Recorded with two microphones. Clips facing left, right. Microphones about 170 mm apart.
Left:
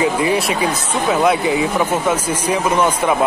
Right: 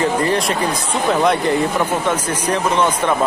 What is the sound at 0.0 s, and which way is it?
Speech, 10° left (ahead or behind).